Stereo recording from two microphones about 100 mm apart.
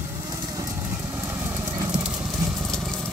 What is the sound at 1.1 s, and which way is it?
Vehicle, 20° right (ahead or behind).